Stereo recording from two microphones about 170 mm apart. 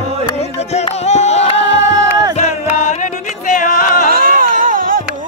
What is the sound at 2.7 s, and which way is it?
Music, 45° left (ahead or behind).